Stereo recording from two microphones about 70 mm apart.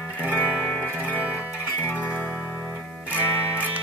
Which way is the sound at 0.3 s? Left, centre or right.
Left.